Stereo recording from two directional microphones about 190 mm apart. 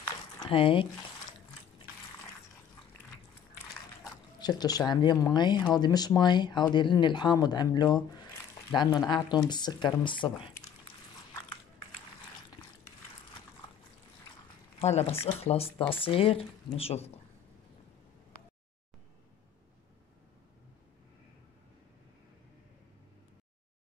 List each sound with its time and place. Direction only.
0.5 s speech: 30° left (ahead or behind)
4.4 s speech: 20° left (ahead or behind)
14.8 s speech: 35° left (ahead or behind)